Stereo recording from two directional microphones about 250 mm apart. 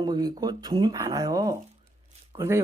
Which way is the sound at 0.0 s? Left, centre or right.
Centre.